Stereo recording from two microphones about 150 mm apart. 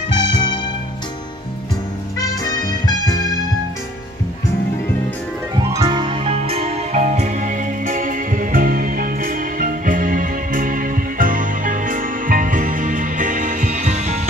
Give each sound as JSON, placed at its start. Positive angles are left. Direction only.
{"t": 0.2, "sound": "music", "side_deg": 30}
{"t": 2.1, "sound": "music", "side_deg": 25}
{"t": 5.7, "sound": "music", "side_deg": -30}